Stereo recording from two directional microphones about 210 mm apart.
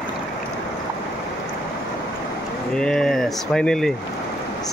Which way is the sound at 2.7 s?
5° left (ahead or behind).